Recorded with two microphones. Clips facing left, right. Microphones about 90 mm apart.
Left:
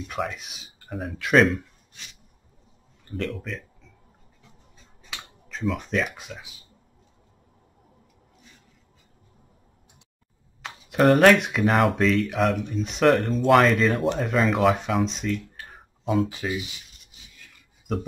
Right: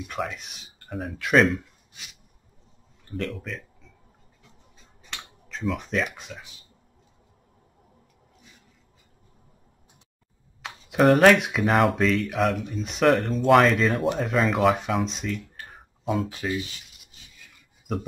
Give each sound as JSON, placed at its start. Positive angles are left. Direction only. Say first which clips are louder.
{"t": 0.1, "sound": "speech", "louder": "left 2 dB", "side_deg": 0}
{"t": 3.1, "sound": "speech", "louder": "left 1 dB", "side_deg": 0}
{"t": 5.1, "sound": "speech", "louder": "even", "side_deg": 0}
{"t": 10.6, "sound": "speech", "louder": "even", "side_deg": 0}
{"t": 17.9, "sound": "speech", "louder": "left 1 dB", "side_deg": -5}